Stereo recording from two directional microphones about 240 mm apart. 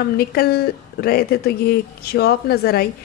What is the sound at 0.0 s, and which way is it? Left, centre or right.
Speech, left.